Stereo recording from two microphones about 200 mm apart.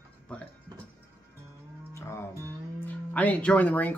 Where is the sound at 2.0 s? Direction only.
10° left (ahead or behind).